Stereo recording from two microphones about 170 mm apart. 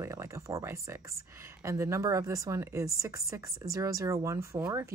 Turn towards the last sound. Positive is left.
turn(degrees=-15)  # may be behind; listen again after turning